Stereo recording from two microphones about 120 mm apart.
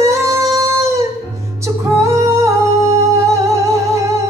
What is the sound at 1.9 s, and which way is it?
Singing, 25° right (ahead or behind).